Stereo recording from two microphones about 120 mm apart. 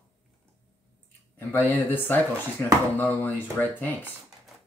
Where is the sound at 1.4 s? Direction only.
15° left (ahead or behind).